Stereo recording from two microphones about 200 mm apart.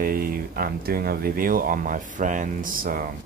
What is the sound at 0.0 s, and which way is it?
Speech, 45° right (ahead or behind).